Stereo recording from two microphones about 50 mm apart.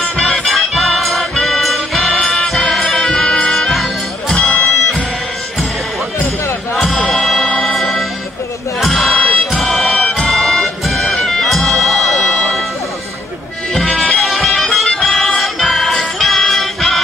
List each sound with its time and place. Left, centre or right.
0.5 s music: centre
4.3 s music: left
7.1 s music: centre
8.8 s a sound: centre
9.1 s music: left
9.5 s music: centre
9.9 s music: left
10.3 s bagpipes: centre
11.8 s music: centre
14.0 s music: centre
14.5 s music: centre